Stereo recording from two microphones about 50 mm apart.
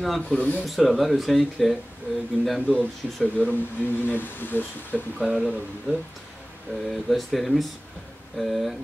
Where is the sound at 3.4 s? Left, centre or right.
Left.